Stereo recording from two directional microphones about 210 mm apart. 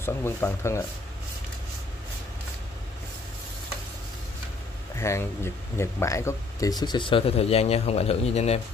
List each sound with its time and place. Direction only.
0.0 s speech: 10° left (ahead or behind)
4.9 s speech: 10° left (ahead or behind); by 8.5 s 30° left (ahead or behind)